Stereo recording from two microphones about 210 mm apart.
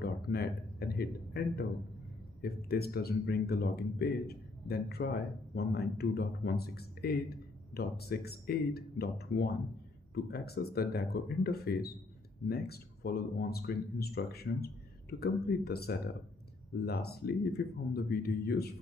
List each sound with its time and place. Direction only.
0.0 s speech: 50° left (ahead or behind)